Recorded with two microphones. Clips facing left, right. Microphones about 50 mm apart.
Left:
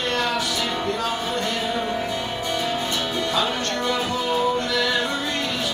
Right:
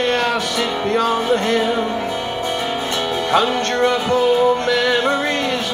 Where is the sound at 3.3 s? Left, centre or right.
Right.